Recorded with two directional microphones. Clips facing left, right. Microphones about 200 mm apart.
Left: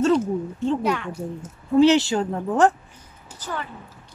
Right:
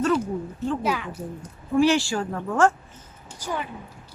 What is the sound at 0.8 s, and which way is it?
Speech, 5° right (ahead or behind).